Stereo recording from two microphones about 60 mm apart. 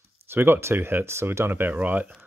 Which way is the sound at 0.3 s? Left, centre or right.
Right.